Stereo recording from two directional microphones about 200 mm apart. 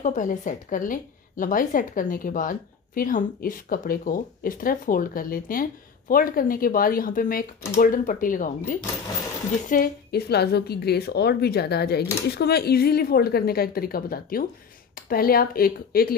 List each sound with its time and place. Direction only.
0.0 s a woman's voice: 40° left (ahead or behind)